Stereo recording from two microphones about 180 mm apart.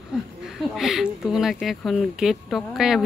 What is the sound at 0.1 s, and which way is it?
Speech, 5° right (ahead or behind).